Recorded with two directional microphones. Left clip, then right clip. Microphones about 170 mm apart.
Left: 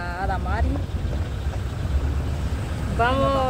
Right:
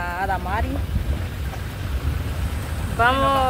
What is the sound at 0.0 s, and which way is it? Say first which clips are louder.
Vehicle: right 3 dB; 20° right (ahead or behind).